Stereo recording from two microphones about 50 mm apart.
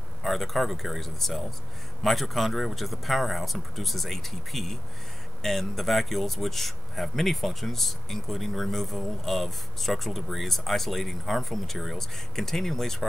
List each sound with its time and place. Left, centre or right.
0.2 s speech: centre